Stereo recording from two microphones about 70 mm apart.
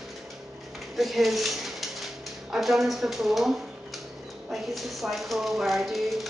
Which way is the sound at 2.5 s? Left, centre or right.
Centre.